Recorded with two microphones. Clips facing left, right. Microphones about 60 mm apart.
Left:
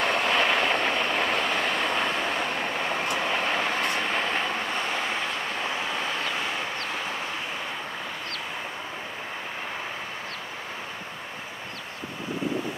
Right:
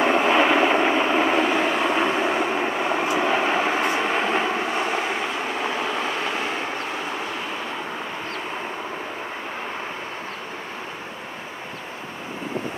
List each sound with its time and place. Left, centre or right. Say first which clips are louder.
0.0 s vehicle: right 6 dB; centre; by 6.0 s right